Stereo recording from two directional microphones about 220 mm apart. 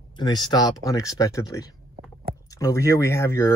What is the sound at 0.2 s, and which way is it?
Speech, 20° left (ahead or behind).